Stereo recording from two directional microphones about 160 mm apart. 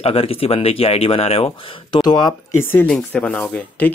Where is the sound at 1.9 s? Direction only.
25° left (ahead or behind).